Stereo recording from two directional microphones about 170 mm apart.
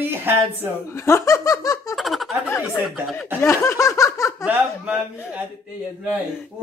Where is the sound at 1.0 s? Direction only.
15° left (ahead or behind).